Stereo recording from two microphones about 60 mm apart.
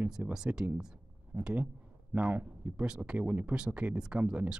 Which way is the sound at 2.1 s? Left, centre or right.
Right.